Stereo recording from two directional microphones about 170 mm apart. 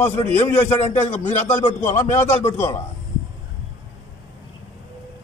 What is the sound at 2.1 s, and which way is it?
Speech, 15° left (ahead or behind).